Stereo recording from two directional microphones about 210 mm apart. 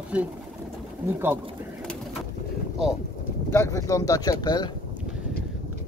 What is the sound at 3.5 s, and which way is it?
Speech, 15° left (ahead or behind).